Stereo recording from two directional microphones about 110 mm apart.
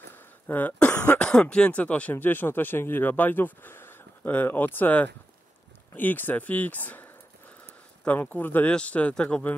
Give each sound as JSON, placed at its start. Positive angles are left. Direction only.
{"t": 0.1, "sound": "speech", "side_deg": 15}